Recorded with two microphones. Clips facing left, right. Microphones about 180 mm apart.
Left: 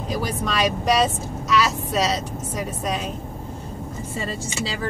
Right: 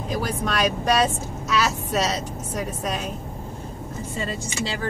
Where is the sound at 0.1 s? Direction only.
Centre (ahead or behind).